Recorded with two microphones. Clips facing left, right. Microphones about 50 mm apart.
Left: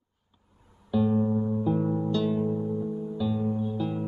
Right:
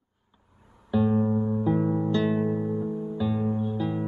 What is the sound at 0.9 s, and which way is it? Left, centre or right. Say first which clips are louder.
Music: right 1 dB; right.